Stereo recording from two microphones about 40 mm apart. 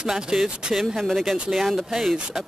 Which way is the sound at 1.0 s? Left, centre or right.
Centre.